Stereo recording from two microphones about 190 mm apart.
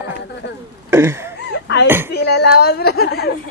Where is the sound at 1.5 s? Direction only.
65° left (ahead or behind).